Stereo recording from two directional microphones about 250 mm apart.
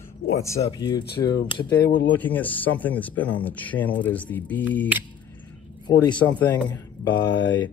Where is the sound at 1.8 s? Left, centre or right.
Left.